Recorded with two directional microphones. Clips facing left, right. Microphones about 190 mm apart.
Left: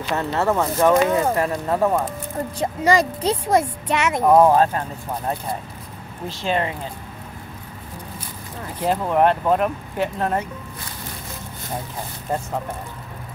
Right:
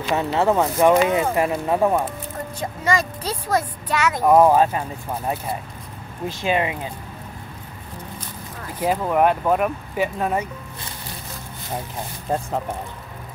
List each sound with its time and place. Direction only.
0.1 s speech: 15° right (ahead or behind)
2.6 s a woman's voice: 30° left (ahead or behind)
4.2 s speech: 5° right (ahead or behind)
6.2 s speech: 10° right (ahead or behind)
8.7 s speech: 5° right (ahead or behind)